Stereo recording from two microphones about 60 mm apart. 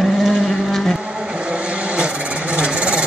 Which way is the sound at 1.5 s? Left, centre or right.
Centre.